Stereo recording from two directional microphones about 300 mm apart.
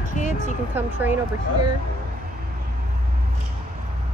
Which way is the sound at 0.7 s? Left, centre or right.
Centre.